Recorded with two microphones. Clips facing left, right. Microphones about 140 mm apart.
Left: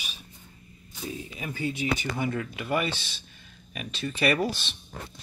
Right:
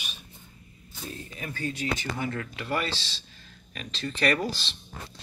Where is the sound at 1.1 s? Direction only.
10° left (ahead or behind).